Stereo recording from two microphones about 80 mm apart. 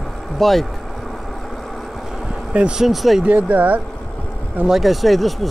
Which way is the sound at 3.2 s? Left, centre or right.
Centre.